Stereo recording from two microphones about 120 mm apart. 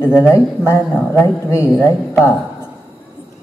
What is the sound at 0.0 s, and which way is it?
A man's voice, 20° left (ahead or behind).